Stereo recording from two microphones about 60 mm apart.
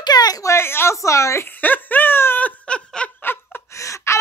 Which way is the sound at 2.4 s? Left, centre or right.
Left.